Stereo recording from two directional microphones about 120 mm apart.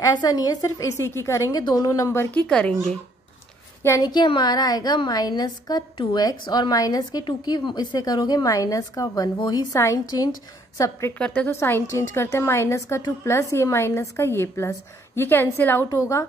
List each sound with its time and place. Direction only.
0.0 s a woman's voice: 30° left (ahead or behind)
2.3 s a woman's voice: 10° left (ahead or behind)
3.8 s a woman's voice: 25° left (ahead or behind)
4.1 s a woman's voice: 40° left (ahead or behind)
11.1 s a woman's voice: 10° left (ahead or behind)